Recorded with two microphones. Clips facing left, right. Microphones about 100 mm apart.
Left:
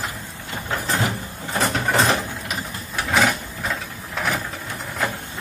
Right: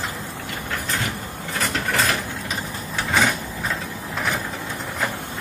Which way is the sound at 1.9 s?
30° left (ahead or behind).